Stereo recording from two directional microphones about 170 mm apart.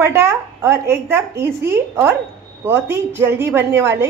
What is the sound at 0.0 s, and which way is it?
A woman's voice, 15° right (ahead or behind).